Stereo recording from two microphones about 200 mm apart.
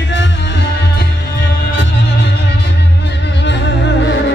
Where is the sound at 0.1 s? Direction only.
60° left (ahead or behind).